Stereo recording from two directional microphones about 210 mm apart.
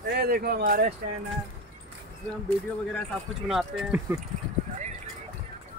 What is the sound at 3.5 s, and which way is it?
Speech, centre (ahead or behind).